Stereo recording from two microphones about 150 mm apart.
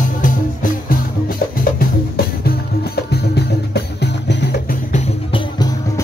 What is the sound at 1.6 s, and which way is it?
Music, 85° left.